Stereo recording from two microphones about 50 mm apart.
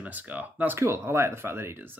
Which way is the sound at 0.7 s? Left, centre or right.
Right.